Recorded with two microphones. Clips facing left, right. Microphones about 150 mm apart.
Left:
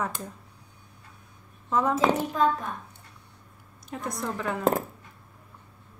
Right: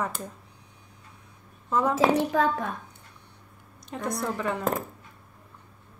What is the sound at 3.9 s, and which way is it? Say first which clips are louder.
Speech: right 2 dB; centre (ahead or behind).